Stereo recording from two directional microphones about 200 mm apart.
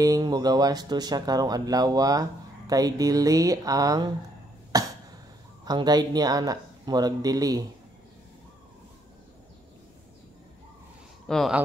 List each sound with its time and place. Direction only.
0.0 s speech: 20° right (ahead or behind)
4.7 s cough: 20° right (ahead or behind)
5.7 s speech: 20° right (ahead or behind)
11.2 s speech: centre (ahead or behind)